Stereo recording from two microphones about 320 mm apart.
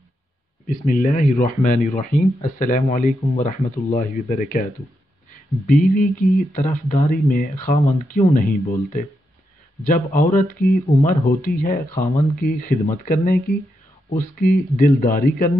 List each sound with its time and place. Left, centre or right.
0.7 s speech: left